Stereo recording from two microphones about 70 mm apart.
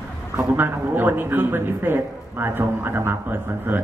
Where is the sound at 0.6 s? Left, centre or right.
Right.